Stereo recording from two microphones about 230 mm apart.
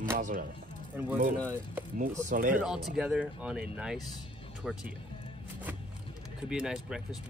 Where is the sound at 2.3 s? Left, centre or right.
Right.